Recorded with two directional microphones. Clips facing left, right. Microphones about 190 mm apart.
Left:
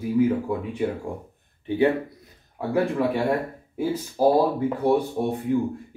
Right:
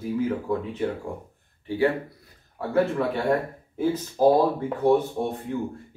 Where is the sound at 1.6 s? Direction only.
20° left (ahead or behind).